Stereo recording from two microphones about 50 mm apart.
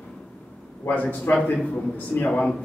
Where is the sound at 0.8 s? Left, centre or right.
Left.